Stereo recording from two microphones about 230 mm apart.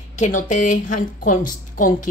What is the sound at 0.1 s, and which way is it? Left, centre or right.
A woman's voice, left.